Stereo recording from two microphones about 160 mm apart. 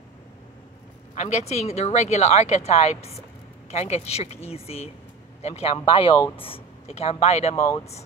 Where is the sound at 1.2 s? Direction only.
45° left (ahead or behind).